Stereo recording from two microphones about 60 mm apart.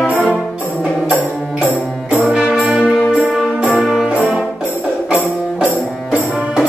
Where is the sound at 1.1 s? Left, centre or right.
Left.